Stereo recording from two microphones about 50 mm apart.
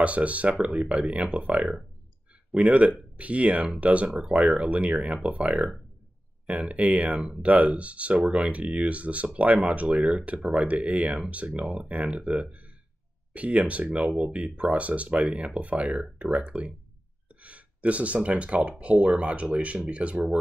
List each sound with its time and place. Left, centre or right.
0.0 s speech: right